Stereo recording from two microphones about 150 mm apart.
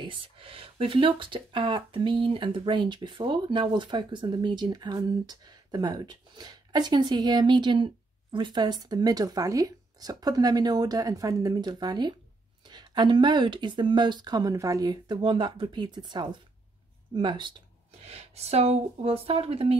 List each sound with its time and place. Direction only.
0.0 s speech: 35° right (ahead or behind)